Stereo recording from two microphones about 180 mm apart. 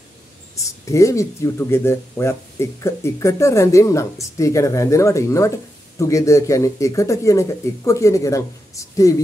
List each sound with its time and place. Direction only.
0.8 s speech: 15° left (ahead or behind)